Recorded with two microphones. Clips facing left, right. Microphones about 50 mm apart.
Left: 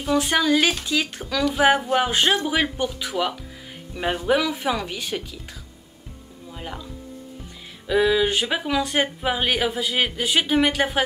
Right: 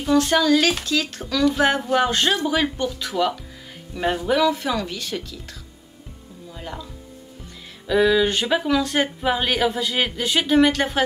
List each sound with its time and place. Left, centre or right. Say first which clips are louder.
0.0 s speech: right 3 dB; centre
7.9 s speech: right 1 dB; centre